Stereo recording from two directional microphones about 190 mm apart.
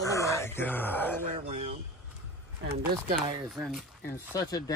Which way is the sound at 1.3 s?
35° right (ahead or behind).